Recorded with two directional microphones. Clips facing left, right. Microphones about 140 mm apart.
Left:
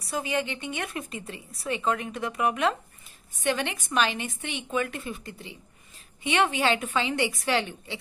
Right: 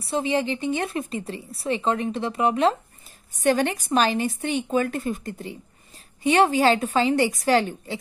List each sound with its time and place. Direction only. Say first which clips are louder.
0.0 s a woman's voice: right 5 dB; 30° right (ahead or behind)
3.3 s a woman's voice: right 7 dB; 40° right (ahead or behind)